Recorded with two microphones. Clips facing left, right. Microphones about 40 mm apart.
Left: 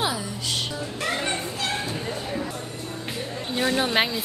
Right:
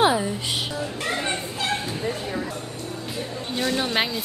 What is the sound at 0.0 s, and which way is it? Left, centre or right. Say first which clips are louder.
Music: right 7 dB; right.